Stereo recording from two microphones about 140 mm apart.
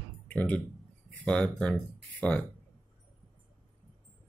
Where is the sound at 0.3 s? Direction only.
10° left (ahead or behind).